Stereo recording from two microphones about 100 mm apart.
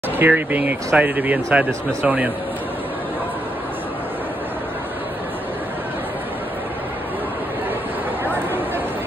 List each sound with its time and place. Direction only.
0.2 s speech: 15° right (ahead or behind)